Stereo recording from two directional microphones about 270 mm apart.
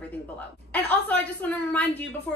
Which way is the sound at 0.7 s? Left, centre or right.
Centre.